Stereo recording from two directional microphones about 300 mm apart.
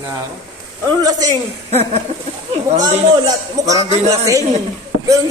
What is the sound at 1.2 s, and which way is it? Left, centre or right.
A woman's voice, centre.